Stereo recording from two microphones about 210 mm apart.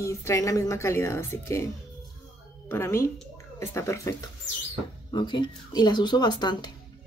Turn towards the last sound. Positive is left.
turn(degrees=20)  # may be behind; listen again after turning